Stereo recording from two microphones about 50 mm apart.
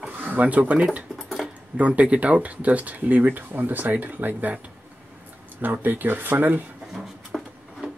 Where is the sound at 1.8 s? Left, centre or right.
Right.